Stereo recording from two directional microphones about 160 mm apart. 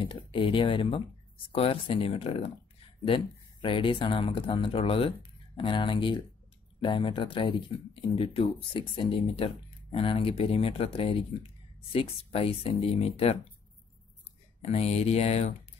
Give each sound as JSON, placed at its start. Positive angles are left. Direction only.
{"t": 0.0, "sound": "speech", "side_deg": 30}
{"t": 3.6, "sound": "speech", "side_deg": 30}
{"t": 14.6, "sound": "speech", "side_deg": 40}